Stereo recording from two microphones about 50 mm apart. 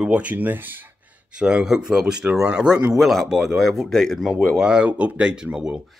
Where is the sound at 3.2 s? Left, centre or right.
Centre.